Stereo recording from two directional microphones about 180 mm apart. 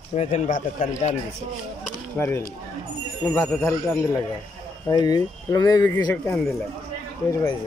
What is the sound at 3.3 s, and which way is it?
Speech, centre (ahead or behind).